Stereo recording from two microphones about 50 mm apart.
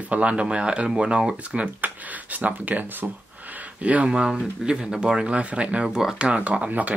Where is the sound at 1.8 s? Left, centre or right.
Right.